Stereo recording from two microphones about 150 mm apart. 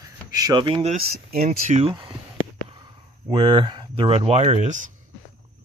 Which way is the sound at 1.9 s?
30° right (ahead or behind).